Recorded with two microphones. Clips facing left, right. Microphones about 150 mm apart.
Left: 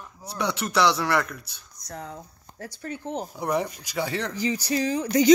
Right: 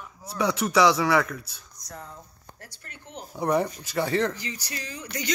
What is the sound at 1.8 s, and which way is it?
Speech, 70° left (ahead or behind).